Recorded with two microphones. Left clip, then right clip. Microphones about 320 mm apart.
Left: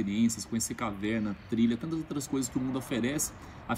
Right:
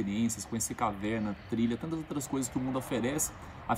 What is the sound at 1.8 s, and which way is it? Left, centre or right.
Speech, right.